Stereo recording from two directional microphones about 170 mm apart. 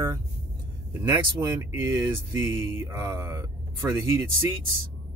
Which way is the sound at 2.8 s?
15° right (ahead or behind).